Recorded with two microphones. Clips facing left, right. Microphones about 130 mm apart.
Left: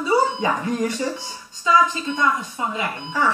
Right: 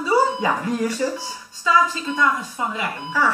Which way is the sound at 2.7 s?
20° left (ahead or behind).